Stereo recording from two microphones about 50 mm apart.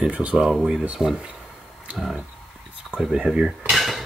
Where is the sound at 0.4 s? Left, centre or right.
Centre.